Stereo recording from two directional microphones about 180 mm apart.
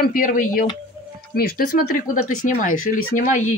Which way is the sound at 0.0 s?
50° left (ahead or behind).